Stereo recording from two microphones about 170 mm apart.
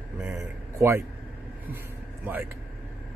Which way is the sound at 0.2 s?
15° right (ahead or behind).